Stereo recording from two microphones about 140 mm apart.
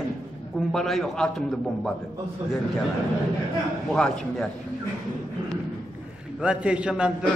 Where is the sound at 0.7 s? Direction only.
Centre (ahead or behind).